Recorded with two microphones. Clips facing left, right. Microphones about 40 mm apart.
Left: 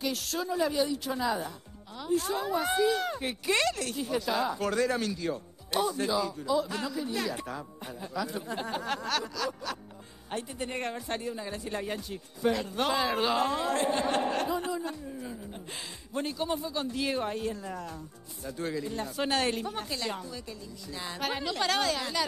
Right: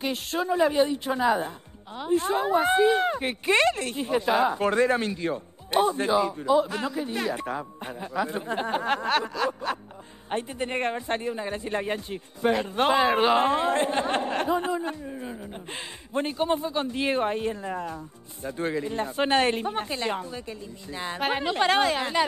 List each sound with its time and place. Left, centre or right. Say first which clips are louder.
0.0 s speech: right 4 dB; right